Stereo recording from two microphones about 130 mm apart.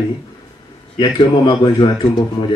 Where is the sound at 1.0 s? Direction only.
35° left (ahead or behind).